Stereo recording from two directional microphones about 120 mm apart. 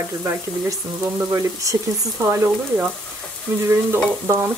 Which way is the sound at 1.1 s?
25° right (ahead or behind).